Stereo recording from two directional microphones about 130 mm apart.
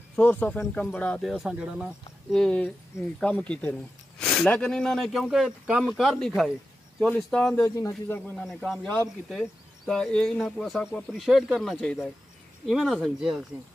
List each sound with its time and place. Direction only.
0.1 s speech: 10° left (ahead or behind)
1.2 s speech: 5° right (ahead or behind)
2.2 s speech: 5° left (ahead or behind)
7.5 s speech: 25° left (ahead or behind)
8.3 s speech: 5° left (ahead or behind)